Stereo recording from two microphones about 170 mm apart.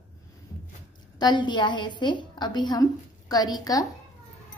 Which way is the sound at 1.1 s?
25° left (ahead or behind).